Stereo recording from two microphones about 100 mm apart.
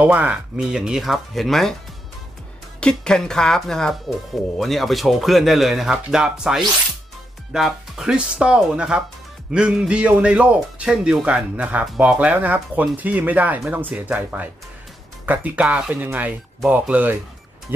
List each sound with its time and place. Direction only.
0.0 s speech: 15° right (ahead or behind); by 1.8 s 5° left (ahead or behind)
2.8 s speech: 5° left (ahead or behind); by 15.6 s 15° right (ahead or behind)
15.6 s speech: 5° right (ahead or behind)
15.9 s speech: 15° right (ahead or behind)
17.7 s music: 20° right (ahead or behind)